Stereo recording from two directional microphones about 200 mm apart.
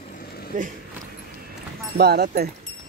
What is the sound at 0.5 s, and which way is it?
Speech, 40° right (ahead or behind).